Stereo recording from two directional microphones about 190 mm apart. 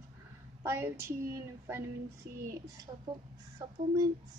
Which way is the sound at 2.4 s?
20° right (ahead or behind).